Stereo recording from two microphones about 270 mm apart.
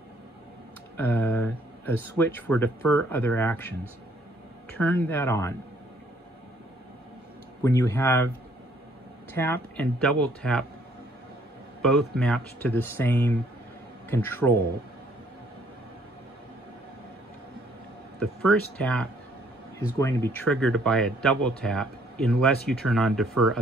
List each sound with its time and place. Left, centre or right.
0.9 s speech: centre
4.7 s speech: centre
7.6 s speech: centre
9.4 s speech: centre
11.8 s speech: centre
18.2 s speech: centre